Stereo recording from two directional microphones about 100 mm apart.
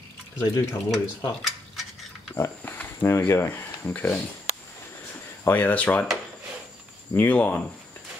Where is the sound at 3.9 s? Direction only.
20° left (ahead or behind).